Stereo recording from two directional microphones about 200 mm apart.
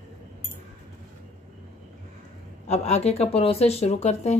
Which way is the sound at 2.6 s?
35° left (ahead or behind).